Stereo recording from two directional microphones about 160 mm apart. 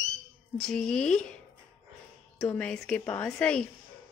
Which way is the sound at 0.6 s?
5° left (ahead or behind).